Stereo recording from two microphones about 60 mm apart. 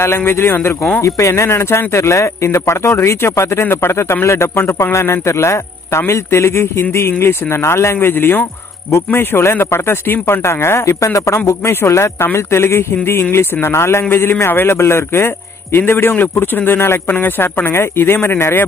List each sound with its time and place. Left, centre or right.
0.0 s a man's voice: left
1.0 s a man's voice: left